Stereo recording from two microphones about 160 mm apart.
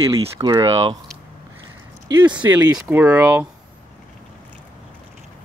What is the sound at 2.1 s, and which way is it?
Speech, 25° right (ahead or behind).